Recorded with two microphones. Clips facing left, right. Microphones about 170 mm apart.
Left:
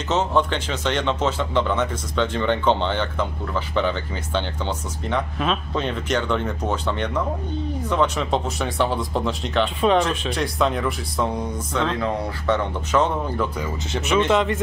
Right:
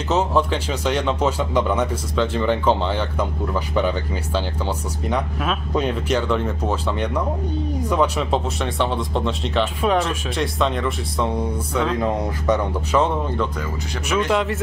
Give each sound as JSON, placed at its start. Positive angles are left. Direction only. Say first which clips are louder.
{"t": 0.3, "sound": "speech", "louder": "right 1 dB", "side_deg": -5}
{"t": 11.7, "sound": "speech", "louder": "right 2 dB", "side_deg": -10}
{"t": 14.3, "sound": "speech", "louder": "left 1 dB", "side_deg": -5}